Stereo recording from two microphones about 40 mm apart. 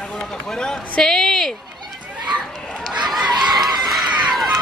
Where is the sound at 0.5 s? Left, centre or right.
Centre.